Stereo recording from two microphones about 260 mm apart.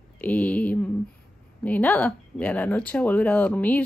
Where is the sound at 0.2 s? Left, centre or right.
Centre.